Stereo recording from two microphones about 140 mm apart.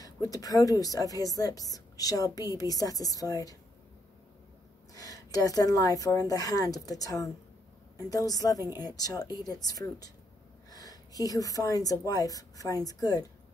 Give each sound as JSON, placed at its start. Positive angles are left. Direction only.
{"t": 0.0, "sound": "a woman's voice", "side_deg": 25}
{"t": 4.9, "sound": "a woman's voice", "side_deg": 25}